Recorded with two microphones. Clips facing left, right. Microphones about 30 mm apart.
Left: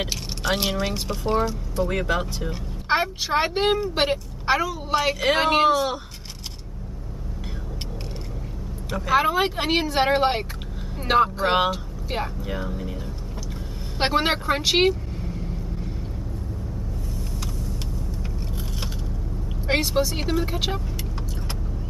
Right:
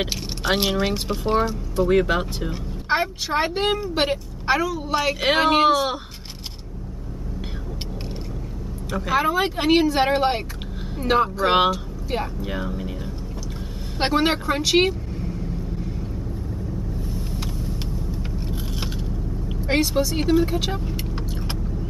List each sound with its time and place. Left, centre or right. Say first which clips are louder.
0.0 s a sound: right 2 dB; centre
0.7 s speech: right 3 dB; centre
2.9 s a woman's voice: even; centre
9.1 s speech: left 1 dB; centre
12.4 s speech: right 2 dB; centre
13.9 s speech: right 1 dB; centre
18.5 s vehicle: right 3 dB; centre
19.6 s speech: right 1 dB; centre